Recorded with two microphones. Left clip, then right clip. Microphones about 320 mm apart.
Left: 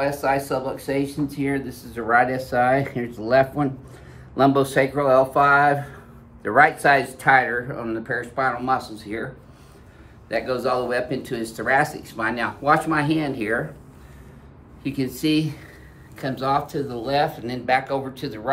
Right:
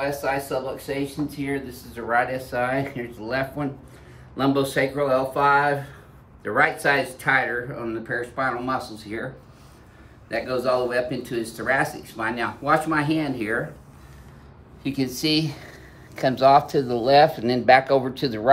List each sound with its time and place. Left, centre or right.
0.0 s speech: centre
10.2 s speech: centre
14.8 s speech: centre; by 18.5 s right